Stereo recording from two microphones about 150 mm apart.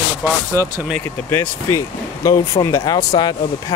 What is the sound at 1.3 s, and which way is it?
Speech, 15° left (ahead or behind).